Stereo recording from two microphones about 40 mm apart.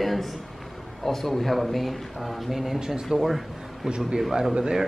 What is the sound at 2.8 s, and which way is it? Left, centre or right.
Speech, centre.